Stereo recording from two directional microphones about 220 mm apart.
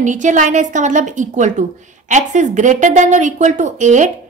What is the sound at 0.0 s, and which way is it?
A woman's voice, 35° right (ahead or behind).